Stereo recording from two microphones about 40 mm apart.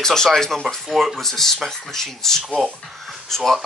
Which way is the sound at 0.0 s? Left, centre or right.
Centre.